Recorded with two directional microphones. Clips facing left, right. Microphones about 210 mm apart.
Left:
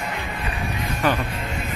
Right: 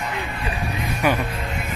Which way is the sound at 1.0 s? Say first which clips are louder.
Right 1 dB; 10° right (ahead or behind).